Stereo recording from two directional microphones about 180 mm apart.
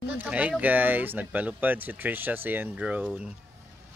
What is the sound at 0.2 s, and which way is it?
Speech, 5° right (ahead or behind).